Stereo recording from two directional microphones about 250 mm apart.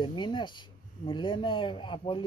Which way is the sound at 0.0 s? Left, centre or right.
Centre.